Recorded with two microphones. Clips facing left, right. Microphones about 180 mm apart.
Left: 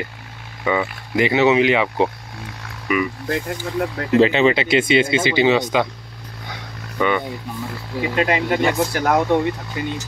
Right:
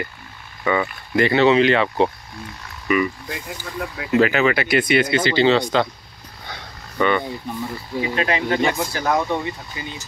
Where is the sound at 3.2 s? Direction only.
55° left (ahead or behind).